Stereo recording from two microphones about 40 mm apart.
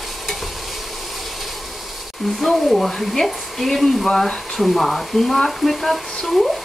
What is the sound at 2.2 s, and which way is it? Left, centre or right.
Speech, centre.